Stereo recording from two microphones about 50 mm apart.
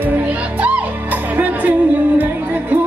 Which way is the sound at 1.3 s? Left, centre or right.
Right.